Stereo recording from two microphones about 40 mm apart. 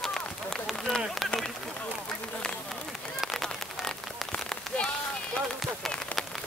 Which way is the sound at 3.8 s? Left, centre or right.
Centre.